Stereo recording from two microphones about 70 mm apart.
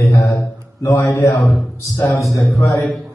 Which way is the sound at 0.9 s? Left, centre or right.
Left.